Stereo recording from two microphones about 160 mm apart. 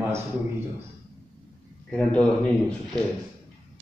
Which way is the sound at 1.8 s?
5° left (ahead or behind).